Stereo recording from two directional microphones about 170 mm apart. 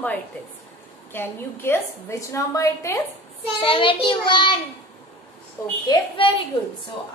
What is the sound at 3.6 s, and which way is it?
A woman's voice, 30° left (ahead or behind).